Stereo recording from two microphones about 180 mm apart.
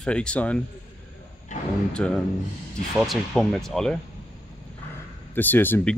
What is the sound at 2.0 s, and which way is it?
Speech, 5° left (ahead or behind).